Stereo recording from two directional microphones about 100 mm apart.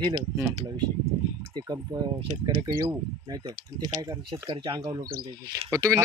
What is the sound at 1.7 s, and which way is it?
Speech, 40° right (ahead or behind).